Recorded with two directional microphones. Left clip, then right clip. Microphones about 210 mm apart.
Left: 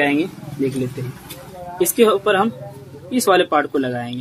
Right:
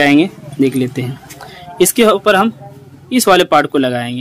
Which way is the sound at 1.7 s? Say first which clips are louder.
Right 4 dB; 40° right (ahead or behind).